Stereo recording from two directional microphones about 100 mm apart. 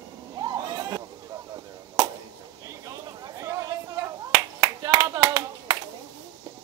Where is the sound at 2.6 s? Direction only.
35° right (ahead or behind).